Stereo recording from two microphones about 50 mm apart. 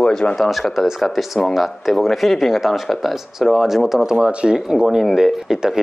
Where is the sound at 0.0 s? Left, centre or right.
Centre.